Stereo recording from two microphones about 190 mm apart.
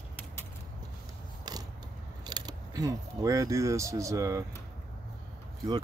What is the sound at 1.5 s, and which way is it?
Mechanisms, 20° right (ahead or behind).